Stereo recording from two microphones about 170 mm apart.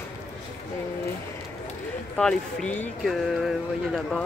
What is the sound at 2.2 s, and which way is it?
Speech, 5° left (ahead or behind).